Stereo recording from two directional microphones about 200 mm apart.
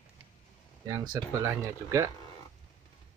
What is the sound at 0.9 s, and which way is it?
Speech, 20° right (ahead or behind).